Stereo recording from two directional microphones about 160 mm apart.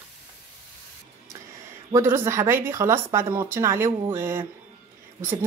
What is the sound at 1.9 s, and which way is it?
Speech, 15° right (ahead or behind).